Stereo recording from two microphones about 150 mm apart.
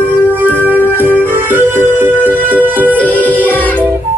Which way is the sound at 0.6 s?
10° right (ahead or behind).